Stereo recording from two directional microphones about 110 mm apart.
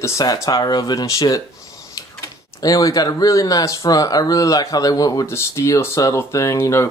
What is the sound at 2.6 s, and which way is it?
Speech, 35° left (ahead or behind).